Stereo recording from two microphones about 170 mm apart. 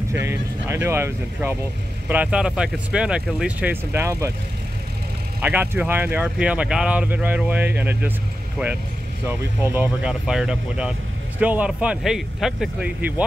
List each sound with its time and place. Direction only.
0.1 s speech: 15° right (ahead or behind)
5.4 s speech: 10° right (ahead or behind)